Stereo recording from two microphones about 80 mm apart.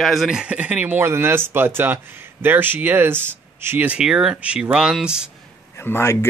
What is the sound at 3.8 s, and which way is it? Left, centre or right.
Speech, centre.